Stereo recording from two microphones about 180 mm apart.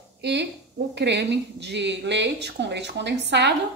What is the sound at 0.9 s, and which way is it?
A woman's voice, 70° right (ahead or behind).